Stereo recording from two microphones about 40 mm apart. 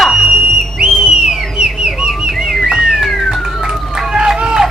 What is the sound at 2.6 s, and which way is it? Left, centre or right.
Music, centre.